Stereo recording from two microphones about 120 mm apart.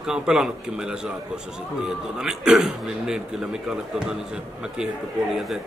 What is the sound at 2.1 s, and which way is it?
A man's voice, 5° right (ahead or behind).